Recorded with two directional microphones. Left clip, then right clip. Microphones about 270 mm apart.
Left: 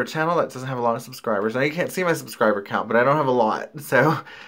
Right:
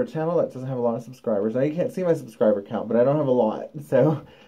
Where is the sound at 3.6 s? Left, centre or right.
Centre.